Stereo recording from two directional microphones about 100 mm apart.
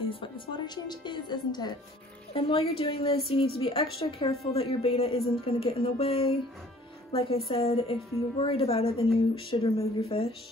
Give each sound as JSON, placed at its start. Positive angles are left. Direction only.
{"t": 0.0, "sound": "a woman's voice", "side_deg": 60}
{"t": 2.3, "sound": "a woman's voice", "side_deg": 75}
{"t": 4.3, "sound": "speech", "side_deg": 85}